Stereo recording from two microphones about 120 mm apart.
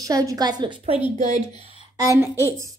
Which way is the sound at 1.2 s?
80° right.